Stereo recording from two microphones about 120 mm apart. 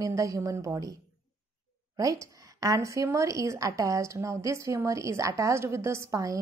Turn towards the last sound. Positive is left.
turn(degrees=-25)  # may be behind; listen again after turning